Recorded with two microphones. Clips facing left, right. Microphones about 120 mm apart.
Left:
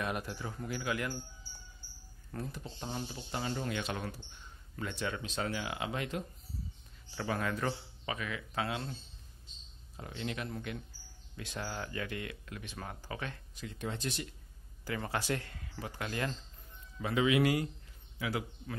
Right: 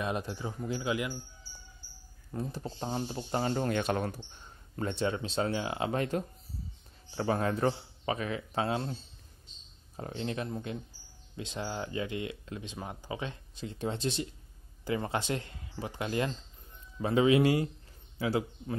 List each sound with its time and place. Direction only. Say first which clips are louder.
0.0 s speech: right 3 dB; 25° right (ahead or behind)
2.3 s speech: right 4 dB; 15° right (ahead or behind)
2.8 s speech: right 6 dB; 35° right (ahead or behind)
9.9 s speech: right 4 dB; 35° right (ahead or behind)